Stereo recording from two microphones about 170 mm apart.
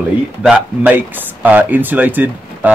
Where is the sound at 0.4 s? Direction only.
5° right (ahead or behind).